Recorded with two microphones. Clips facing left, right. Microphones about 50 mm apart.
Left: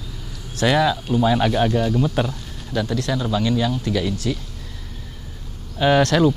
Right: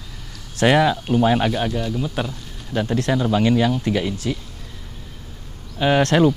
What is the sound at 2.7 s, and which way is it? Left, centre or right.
Speech, right.